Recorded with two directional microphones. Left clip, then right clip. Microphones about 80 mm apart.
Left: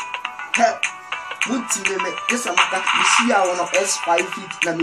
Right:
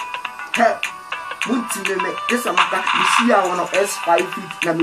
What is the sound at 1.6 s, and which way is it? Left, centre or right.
Speech, left.